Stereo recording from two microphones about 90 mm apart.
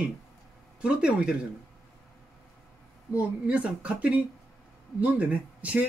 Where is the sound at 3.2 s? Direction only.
15° right (ahead or behind).